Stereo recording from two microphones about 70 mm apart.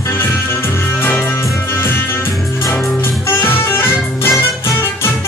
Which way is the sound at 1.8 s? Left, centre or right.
Left.